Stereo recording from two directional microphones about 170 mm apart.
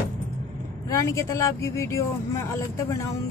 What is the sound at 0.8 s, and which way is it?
A woman's voice, 20° left (ahead or behind).